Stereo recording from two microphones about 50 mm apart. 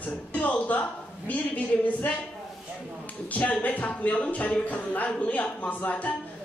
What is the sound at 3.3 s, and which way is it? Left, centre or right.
A man's voice, left.